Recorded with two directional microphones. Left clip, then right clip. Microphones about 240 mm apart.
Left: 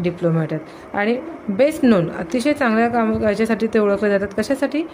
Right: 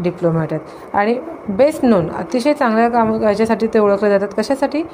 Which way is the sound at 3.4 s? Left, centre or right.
Centre.